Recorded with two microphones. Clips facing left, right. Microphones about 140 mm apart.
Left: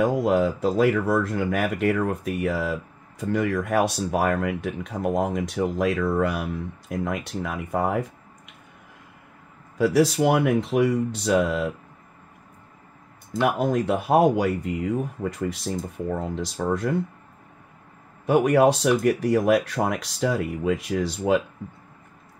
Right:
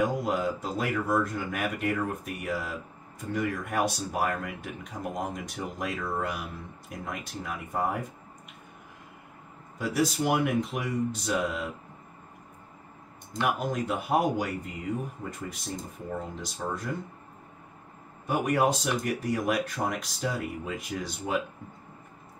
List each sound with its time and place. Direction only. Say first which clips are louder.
0.0 s speech: left 7 dB; 80° left
3.2 s speech: left 7 dB; 85° left
9.8 s speech: left 8 dB; 75° left (ahead or behind)
13.4 s speech: left 7 dB; 65° left (ahead or behind)
18.2 s speech: left 8 dB; 75° left (ahead or behind)